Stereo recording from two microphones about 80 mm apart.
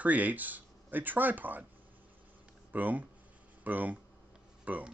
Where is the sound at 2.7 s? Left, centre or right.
Right.